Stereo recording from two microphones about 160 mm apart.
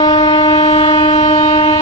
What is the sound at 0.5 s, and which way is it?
Train, 25° left (ahead or behind).